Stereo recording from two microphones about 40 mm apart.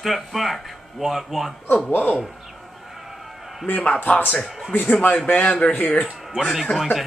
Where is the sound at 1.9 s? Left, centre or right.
Left.